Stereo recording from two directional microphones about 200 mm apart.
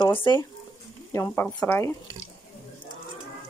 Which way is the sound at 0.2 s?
20° left (ahead or behind).